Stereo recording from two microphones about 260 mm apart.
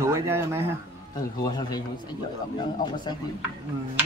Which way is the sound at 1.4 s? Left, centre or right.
Centre.